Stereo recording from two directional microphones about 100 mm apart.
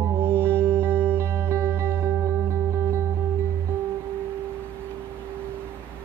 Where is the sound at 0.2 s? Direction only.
25° right (ahead or behind).